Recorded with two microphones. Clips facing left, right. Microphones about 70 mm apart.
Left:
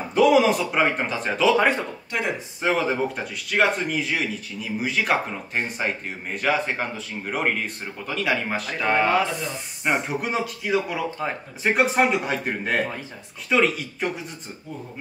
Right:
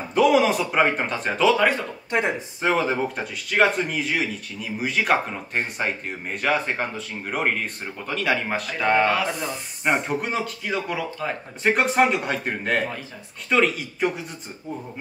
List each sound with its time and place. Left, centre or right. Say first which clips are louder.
0.1 s speech: left 1 dB; centre
2.0 s speech: right 4 dB; right
2.6 s speech: even; centre